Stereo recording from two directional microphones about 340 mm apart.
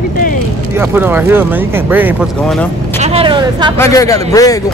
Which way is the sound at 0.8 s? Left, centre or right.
Centre.